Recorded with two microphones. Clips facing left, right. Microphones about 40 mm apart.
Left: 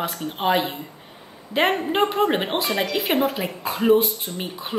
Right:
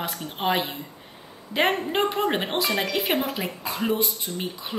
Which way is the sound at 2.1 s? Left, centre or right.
Centre.